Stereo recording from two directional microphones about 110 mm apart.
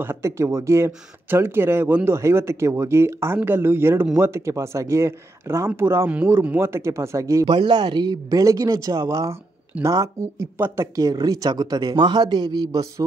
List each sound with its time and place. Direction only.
0.0 s speech: 25° right (ahead or behind)
7.4 s speech: 45° right (ahead or behind)